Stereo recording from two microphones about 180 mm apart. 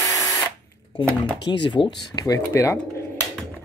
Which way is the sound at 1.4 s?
25° left (ahead or behind).